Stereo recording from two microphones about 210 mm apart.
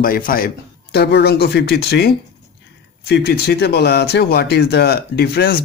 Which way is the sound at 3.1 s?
50° left (ahead or behind).